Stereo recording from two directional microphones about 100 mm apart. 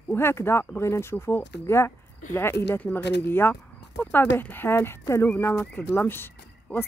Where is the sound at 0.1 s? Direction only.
25° left (ahead or behind).